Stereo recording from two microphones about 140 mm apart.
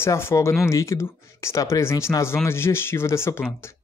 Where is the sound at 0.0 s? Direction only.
20° left (ahead or behind).